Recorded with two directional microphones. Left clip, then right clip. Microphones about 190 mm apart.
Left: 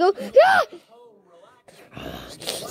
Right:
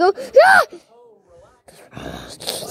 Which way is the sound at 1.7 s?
15° right (ahead or behind).